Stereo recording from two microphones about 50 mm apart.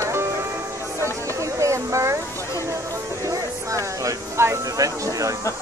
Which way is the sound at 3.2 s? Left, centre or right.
Right.